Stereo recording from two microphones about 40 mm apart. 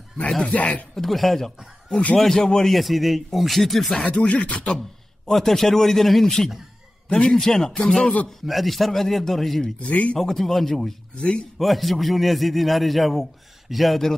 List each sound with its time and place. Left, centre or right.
0.4 s speech: left
0.9 s a man's voice: centre
2.7 s a man's voice: centre
4.3 s speech: left
5.2 s a man's voice: centre
8.0 s speech: left
8.3 s a man's voice: centre
9.8 s speech: left
10.1 s a man's voice: centre
11.1 s speech: left
11.5 s a man's voice: centre